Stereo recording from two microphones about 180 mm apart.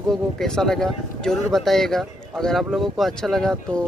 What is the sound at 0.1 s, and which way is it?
Speech, centre (ahead or behind).